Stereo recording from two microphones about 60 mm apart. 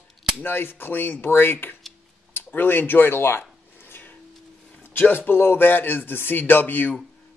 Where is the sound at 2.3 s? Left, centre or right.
Left.